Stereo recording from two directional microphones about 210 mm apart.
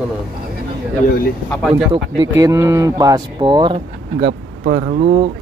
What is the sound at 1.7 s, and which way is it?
Speech, 20° right (ahead or behind).